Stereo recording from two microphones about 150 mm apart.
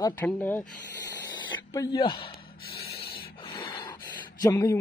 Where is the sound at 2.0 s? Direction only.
35° left (ahead or behind).